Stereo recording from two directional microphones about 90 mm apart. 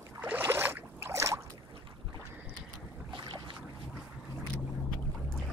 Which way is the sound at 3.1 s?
60° right (ahead or behind).